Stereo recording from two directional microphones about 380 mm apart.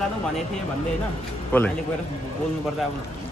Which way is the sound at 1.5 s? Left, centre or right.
Centre.